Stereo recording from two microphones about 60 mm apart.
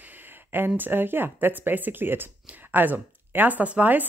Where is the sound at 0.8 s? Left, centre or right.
Right.